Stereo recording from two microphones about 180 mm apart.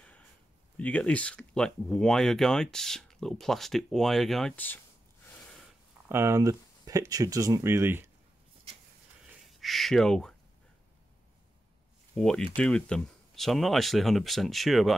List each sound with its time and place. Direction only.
0.7 s speech: 10° left (ahead or behind)
6.0 s speech: 15° right (ahead or behind)
9.5 s speech: centre (ahead or behind)
12.2 s speech: 5° left (ahead or behind)